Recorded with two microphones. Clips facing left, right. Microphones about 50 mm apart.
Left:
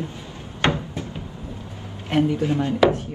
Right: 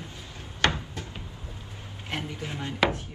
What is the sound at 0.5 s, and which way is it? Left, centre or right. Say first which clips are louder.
Cupboard open or close: left 4 dB; left.